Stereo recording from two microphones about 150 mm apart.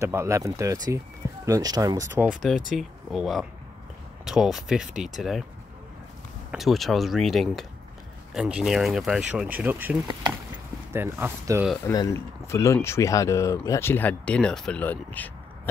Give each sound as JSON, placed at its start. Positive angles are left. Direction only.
{"t": 0.0, "sound": "speech", "side_deg": -20}
{"t": 2.4, "sound": "speech", "side_deg": 0}
{"t": 6.5, "sound": "speech", "side_deg": 0}
{"t": 11.8, "sound": "speech", "side_deg": 20}